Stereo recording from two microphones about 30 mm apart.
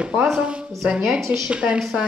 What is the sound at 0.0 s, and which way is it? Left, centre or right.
Speech, right.